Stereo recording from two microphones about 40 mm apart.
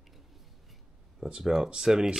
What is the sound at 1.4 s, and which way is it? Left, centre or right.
Speech, centre.